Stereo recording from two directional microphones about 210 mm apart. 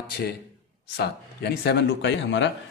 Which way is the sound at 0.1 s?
50° left (ahead or behind).